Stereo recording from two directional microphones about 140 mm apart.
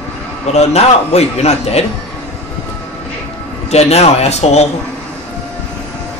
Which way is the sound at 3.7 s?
50° left (ahead or behind).